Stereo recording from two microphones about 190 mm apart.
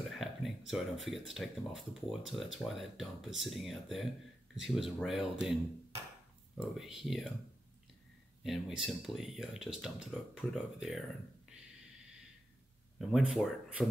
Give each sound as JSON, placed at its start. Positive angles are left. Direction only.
{"t": 0.1, "sound": "speech", "side_deg": 0}
{"t": 8.5, "sound": "speech", "side_deg": 0}
{"t": 13.1, "sound": "speech", "side_deg": 0}